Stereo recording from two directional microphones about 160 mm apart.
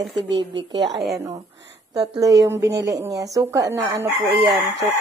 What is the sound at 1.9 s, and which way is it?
Speech, 25° right (ahead or behind).